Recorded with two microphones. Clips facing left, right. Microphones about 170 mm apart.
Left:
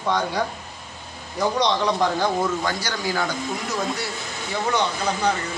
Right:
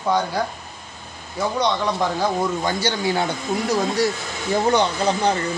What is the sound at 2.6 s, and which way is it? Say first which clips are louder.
Speech: right 4 dB; 25° right (ahead or behind).